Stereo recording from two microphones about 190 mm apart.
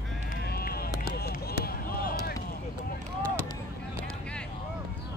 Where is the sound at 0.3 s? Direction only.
55° left (ahead or behind).